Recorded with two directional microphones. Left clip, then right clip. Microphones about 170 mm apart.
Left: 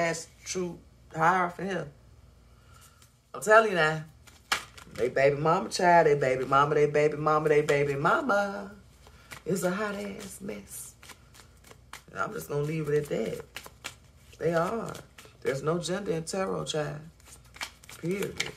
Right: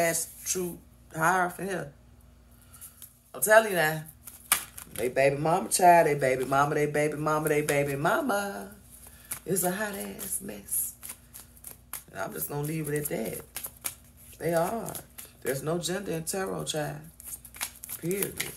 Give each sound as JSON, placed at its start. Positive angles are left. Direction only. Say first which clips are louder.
{"t": 0.0, "sound": "speech", "louder": "right 2 dB", "side_deg": -10}
{"t": 3.3, "sound": "speech", "louder": "even", "side_deg": 10}
{"t": 11.0, "sound": "shuffling cards", "louder": "right 1 dB", "side_deg": 0}
{"t": 11.7, "sound": "typewriter", "louder": "left 1 dB", "side_deg": 5}
{"t": 14.4, "sound": "speech", "louder": "even", "side_deg": 10}